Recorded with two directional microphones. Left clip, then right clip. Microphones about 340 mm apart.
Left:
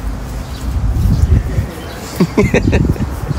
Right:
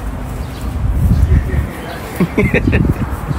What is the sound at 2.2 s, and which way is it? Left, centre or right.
Speech, centre.